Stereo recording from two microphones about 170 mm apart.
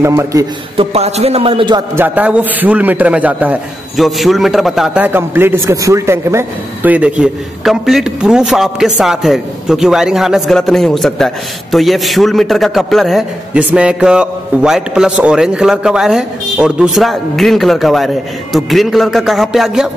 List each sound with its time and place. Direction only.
0.0 s a man's voice: 15° right (ahead or behind)
0.7 s a man's voice: 40° right (ahead or behind)
2.0 s a man's voice: 10° right (ahead or behind)